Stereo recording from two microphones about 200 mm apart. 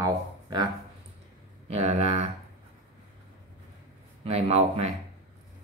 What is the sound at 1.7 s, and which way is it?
Speech, 35° right (ahead or behind).